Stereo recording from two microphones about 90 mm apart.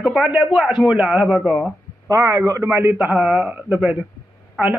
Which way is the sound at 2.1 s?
35° right (ahead or behind).